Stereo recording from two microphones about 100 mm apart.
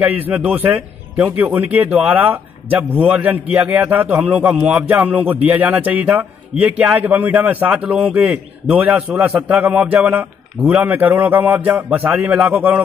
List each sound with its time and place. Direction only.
0.0 s a man's voice: 15° right (ahead or behind)